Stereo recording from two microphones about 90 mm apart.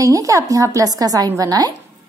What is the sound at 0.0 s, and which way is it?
A woman's voice, 35° right (ahead or behind).